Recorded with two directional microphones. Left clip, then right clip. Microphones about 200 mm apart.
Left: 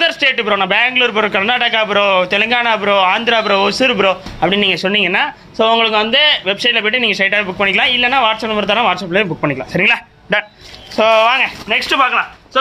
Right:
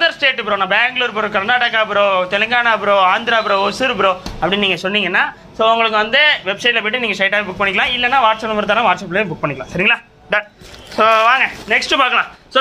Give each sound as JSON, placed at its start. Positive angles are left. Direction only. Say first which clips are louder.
{"t": 0.0, "sound": "a man's voice", "louder": "left 1 dB", "side_deg": 55}
{"t": 9.7, "sound": "speech", "louder": "left 1 dB", "side_deg": 50}
{"t": 11.0, "sound": "speech", "louder": "left 1 dB", "side_deg": 30}
{"t": 11.7, "sound": "speech", "louder": "even", "side_deg": 10}
{"t": 12.0, "sound": "speech", "louder": "left 2 dB", "side_deg": -10}